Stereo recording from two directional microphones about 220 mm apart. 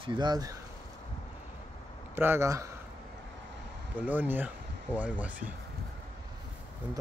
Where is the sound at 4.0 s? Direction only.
10° right (ahead or behind).